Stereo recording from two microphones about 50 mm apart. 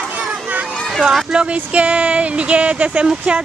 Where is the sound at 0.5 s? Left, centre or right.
Right.